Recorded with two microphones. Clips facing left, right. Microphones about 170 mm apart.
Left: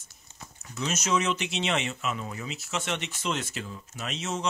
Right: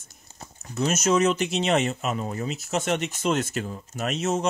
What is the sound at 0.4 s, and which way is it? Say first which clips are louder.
Speech: right 7 dB; 40° right (ahead or behind).